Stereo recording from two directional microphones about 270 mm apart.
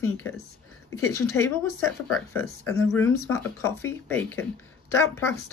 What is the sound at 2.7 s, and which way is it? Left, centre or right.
Speech, centre.